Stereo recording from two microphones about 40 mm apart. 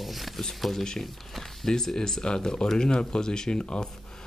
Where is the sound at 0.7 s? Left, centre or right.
Centre.